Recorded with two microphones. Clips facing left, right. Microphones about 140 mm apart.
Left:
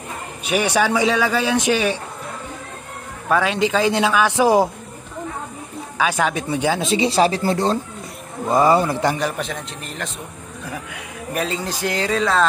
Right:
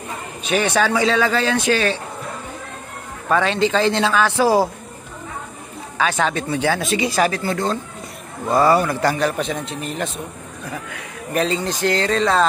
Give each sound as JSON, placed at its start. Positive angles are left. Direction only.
{"t": 0.4, "sound": "speech", "side_deg": 10}
{"t": 3.3, "sound": "speech", "side_deg": 5}
{"t": 5.9, "sound": "speech", "side_deg": 10}
{"t": 6.8, "sound": "speech", "side_deg": 25}
{"t": 8.5, "sound": "speech", "side_deg": 20}
{"t": 9.2, "sound": "speech", "side_deg": 0}